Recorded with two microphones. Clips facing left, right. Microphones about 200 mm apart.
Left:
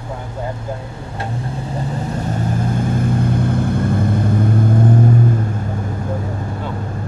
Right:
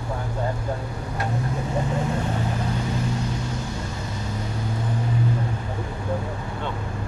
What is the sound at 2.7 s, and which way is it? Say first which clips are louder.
Vehicle: left 8 dB; 50° left (ahead or behind).